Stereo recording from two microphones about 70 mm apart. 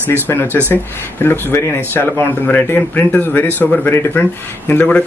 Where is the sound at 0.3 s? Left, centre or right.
Left.